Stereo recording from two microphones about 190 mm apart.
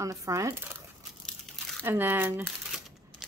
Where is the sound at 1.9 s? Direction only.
10° right (ahead or behind).